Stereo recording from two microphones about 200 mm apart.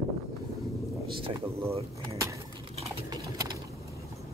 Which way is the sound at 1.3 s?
15° right (ahead or behind).